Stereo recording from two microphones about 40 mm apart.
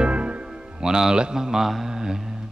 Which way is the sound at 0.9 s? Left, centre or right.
Centre.